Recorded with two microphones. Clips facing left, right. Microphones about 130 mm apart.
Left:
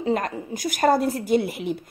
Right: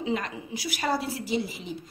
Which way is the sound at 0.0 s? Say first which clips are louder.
Left 6 dB; 45° left (ahead or behind).